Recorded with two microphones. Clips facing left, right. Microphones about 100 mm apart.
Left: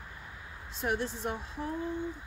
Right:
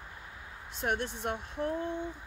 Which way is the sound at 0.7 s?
60° right (ahead or behind).